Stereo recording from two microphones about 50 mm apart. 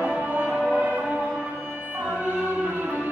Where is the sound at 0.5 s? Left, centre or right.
Centre.